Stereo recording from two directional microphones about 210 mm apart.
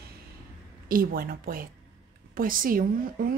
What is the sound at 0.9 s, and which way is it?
Speech, 45° right (ahead or behind).